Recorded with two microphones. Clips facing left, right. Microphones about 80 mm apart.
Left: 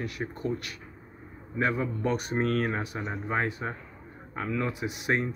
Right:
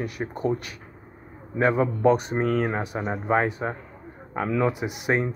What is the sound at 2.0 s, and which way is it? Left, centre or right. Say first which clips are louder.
Speech: right 7 dB; centre.